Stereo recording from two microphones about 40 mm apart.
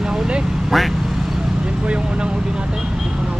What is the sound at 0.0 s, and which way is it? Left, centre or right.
Vehicle, centre.